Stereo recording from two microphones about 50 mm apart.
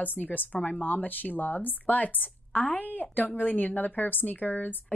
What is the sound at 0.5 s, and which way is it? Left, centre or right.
A woman's voice, left.